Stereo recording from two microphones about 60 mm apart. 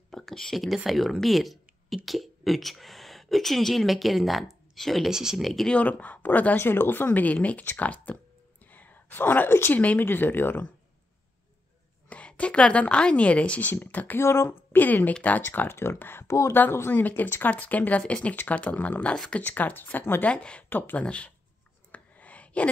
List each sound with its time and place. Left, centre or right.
0.1 s a sound: centre
0.8 s speech: centre
5.1 s speech: centre
5.7 s speech: left
8.6 s whispering: left
9.8 s speech: left
12.1 s a woman's voice: left
14.2 s speech: left
16.3 s a woman's voice: left
17.3 s speech: left
20.2 s speech: centre
20.7 s speech: left
21.0 s speech: centre
21.9 s whispering: left